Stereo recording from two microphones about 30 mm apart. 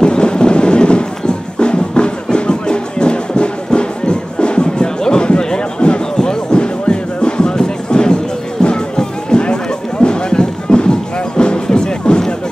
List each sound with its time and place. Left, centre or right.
0.0 s music: left